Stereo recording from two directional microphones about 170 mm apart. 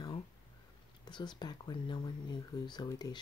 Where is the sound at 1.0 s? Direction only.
25° left (ahead or behind).